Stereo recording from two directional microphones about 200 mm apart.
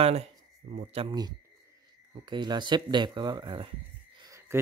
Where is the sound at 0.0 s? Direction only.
30° right (ahead or behind).